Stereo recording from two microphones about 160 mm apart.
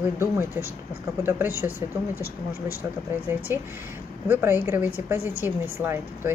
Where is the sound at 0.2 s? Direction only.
15° right (ahead or behind).